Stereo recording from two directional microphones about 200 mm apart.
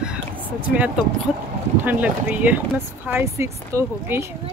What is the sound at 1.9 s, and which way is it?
Speech, 5° right (ahead or behind).